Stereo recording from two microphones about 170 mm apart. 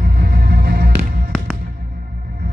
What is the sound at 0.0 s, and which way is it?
Music, 60° right (ahead or behind).